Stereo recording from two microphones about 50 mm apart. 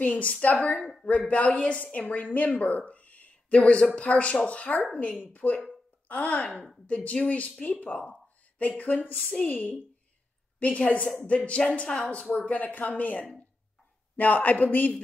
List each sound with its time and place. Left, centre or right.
0.0 s a woman's voice: left